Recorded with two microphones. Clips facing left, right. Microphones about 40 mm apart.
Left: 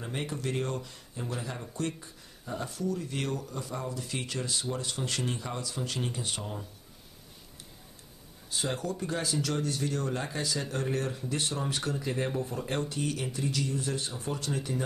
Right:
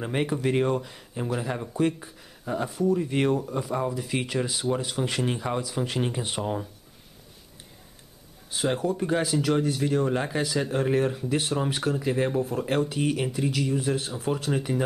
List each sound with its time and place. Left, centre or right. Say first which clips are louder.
0.0 s speech: right 8 dB; right
8.5 s speech: right 7 dB; right
9.2 s speech: right 7 dB; centre
14.3 s speech: right 7 dB; right